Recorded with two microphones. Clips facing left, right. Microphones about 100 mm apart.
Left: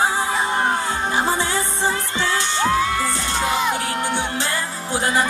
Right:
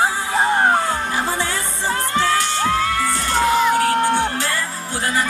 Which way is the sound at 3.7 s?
45° right (ahead or behind).